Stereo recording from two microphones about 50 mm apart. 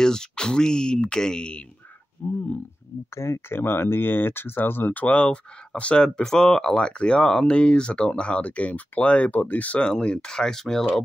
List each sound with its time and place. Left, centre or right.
0.0 s speech: centre
2.2 s speech: left
3.2 s speech: left
5.0 s speech: left
9.8 s speech: centre